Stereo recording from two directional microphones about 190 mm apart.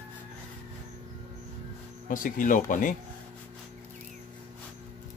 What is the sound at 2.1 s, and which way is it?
Speech, 45° left (ahead or behind).